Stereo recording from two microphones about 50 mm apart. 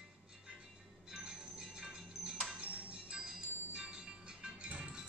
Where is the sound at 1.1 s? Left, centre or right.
Centre.